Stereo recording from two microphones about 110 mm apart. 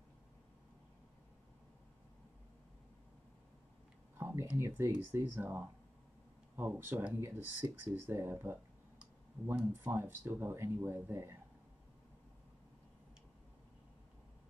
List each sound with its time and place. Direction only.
4.2 s a sound: 20° right (ahead or behind)
4.6 s speech: 25° right (ahead or behind)
9.6 s speech: 20° right (ahead or behind)